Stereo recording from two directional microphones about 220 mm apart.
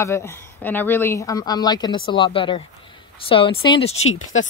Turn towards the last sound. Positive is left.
turn(degrees=65)  # may be behind; listen again after turning